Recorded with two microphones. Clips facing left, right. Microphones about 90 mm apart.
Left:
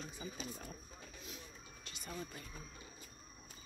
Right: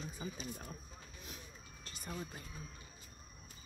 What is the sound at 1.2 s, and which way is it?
Vehicle, 40° right (ahead or behind).